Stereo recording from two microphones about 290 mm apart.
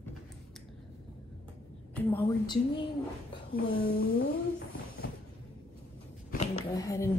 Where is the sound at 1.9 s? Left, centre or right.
Centre.